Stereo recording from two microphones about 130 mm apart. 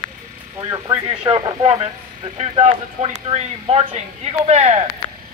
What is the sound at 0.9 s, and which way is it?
Speech, 40° right (ahead or behind).